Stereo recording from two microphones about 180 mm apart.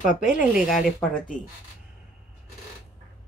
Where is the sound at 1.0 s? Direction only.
5° left (ahead or behind).